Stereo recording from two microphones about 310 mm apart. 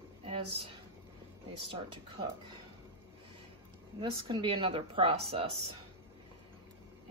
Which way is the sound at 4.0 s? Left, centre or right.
Centre.